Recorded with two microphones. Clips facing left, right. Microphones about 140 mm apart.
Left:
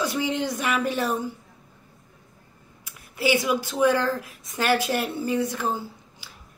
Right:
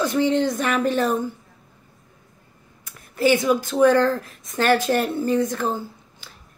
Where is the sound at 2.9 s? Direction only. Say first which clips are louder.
Right 5 dB; 10° left (ahead or behind).